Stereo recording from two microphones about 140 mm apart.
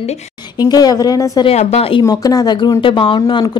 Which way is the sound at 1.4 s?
50° left (ahead or behind).